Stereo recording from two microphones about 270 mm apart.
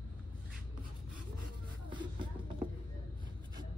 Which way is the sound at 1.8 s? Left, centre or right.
Centre.